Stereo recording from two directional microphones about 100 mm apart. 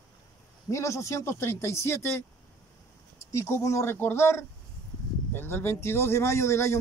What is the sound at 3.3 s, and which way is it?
A man's voice, 30° left (ahead or behind).